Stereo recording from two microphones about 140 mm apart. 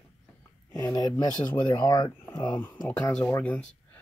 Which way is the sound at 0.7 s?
25° left (ahead or behind).